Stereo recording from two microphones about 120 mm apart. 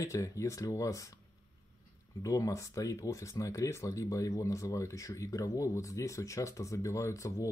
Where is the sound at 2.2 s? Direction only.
25° left (ahead or behind).